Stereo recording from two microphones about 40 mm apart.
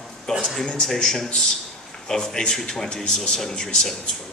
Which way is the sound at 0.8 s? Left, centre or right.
Centre.